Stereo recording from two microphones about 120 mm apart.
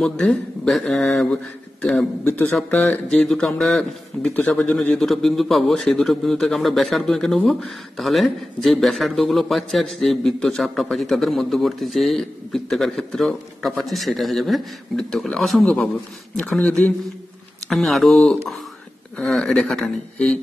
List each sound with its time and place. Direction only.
0.0 s a man's voice: 5° left (ahead or behind)
2.2 s a man's voice: 15° left (ahead or behind)